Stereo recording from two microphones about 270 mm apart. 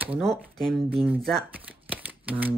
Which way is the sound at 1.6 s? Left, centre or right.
Centre.